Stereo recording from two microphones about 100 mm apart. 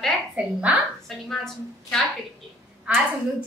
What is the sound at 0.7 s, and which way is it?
Speech, 15° right (ahead or behind).